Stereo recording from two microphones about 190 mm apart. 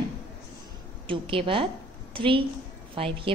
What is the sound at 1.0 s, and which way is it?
A woman's voice, 30° right (ahead or behind).